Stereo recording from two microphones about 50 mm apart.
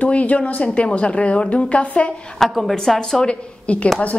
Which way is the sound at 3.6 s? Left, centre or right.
Left.